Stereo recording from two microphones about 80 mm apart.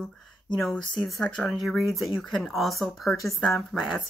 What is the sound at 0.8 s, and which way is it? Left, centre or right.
Speech, left.